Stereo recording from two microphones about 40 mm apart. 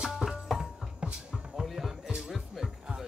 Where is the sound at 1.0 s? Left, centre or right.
Right.